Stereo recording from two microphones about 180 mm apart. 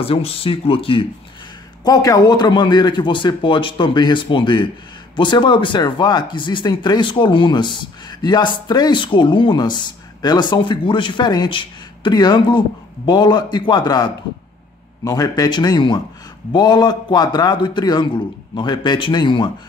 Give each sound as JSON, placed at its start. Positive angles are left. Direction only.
{"t": 0.0, "sound": "speech", "side_deg": 30}